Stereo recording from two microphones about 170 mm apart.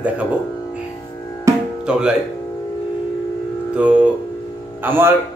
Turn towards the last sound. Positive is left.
turn(degrees=-15)  # may be behind; listen again after turning